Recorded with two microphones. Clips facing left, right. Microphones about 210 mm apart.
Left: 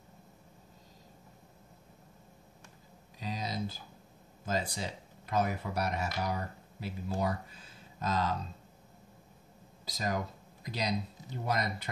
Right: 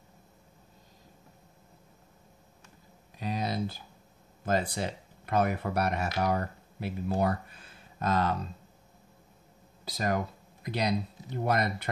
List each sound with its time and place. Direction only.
3.2 s a sound: 60° right (ahead or behind)
4.5 s speech: 60° right (ahead or behind)
9.8 s speech: 60° right (ahead or behind)